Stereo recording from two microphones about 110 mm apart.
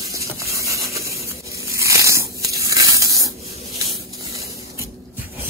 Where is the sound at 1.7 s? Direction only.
25° right (ahead or behind).